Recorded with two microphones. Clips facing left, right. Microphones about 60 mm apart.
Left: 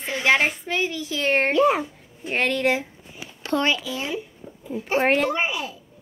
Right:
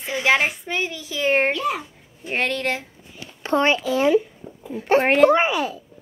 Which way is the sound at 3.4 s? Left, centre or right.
Right.